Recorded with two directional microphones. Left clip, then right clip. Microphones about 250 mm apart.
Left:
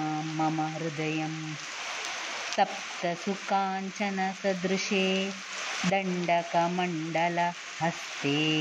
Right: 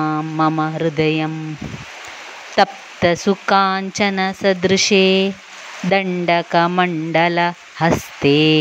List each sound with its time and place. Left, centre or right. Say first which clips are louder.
0.0 s speech: right 12 dB; right
2.5 s speech: right 12 dB; right